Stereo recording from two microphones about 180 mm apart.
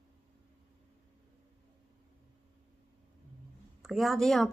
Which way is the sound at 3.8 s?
Centre (ahead or behind).